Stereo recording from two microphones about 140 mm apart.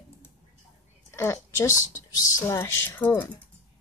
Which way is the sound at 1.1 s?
20° left (ahead or behind).